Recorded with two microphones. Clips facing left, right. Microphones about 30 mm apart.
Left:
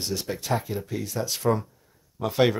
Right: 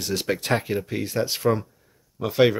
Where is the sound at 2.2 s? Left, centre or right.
Centre.